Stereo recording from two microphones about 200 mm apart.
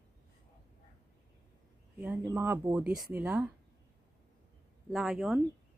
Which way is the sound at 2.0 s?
10° right (ahead or behind).